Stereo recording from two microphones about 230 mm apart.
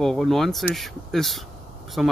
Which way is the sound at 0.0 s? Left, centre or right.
Centre.